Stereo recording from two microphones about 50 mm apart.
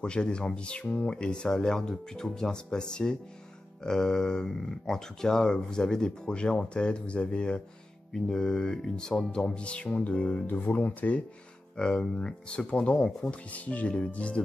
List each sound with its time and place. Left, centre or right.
0.0 s speech: centre
10.4 s speech: left
11.7 s speech: centre